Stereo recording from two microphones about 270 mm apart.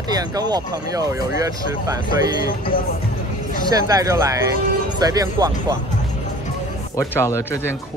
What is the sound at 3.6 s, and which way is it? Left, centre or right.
Speech, centre.